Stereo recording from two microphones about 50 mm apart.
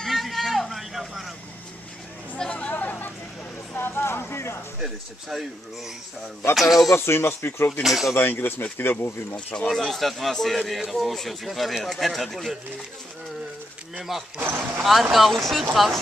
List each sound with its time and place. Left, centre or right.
0.0 s vehicle: centre
2.5 s a sound: left
3.7 s a sound: left
4.7 s speech: centre
6.5 s speech: centre
6.9 s speech: left
7.8 s speech: centre
8.2 s speech: left
9.7 s speech: centre
13.9 s speech: centre